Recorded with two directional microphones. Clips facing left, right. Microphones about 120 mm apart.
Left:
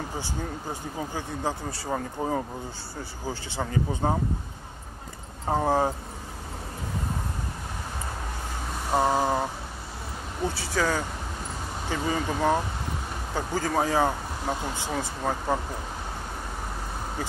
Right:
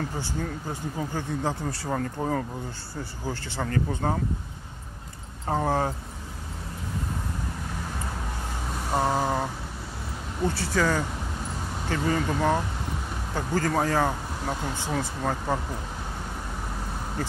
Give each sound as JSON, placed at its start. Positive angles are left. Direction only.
{"t": 0.9, "sound": "speech", "side_deg": 5}
{"t": 5.5, "sound": "speech", "side_deg": 10}
{"t": 8.9, "sound": "speech", "side_deg": 10}